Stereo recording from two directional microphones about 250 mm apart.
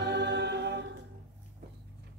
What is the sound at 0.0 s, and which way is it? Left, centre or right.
A capella, right.